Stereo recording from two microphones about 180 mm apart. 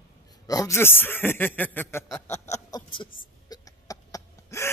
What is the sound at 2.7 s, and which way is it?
Speech, 25° left (ahead or behind).